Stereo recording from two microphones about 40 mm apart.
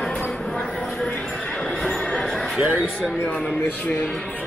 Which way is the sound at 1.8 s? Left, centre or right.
Centre.